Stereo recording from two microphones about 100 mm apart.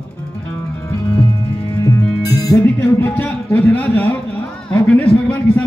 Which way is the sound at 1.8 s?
35° left (ahead or behind).